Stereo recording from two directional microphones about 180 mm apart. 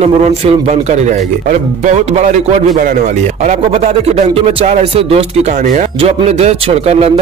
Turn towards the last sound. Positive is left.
turn(degrees=-35)  # may be behind; listen again after turning